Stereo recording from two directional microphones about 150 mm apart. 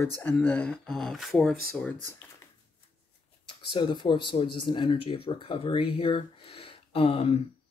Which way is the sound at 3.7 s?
30° left (ahead or behind).